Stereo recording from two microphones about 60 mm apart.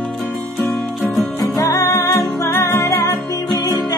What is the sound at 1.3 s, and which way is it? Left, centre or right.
Music, left.